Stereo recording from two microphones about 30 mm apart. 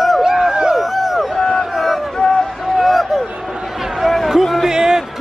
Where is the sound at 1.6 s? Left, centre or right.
Centre.